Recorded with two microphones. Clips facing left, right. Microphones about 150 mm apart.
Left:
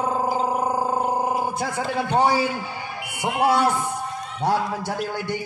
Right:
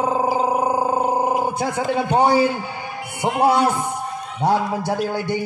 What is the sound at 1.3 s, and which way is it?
A man's voice, 15° right (ahead or behind).